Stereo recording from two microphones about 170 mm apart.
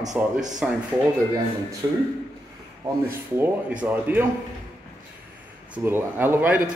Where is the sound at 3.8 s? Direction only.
10° right (ahead or behind).